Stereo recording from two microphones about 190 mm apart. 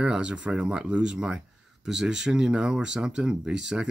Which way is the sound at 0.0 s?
5° right (ahead or behind).